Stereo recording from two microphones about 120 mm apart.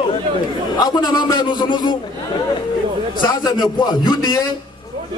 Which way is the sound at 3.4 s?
35° left (ahead or behind).